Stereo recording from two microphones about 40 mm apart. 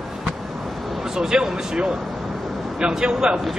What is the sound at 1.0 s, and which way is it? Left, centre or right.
Speech, centre.